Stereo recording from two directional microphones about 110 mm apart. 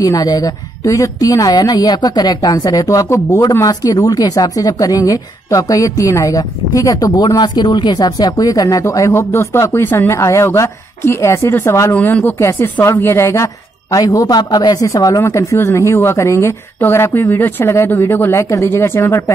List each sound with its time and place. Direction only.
0.0 s speech: 35° left (ahead or behind)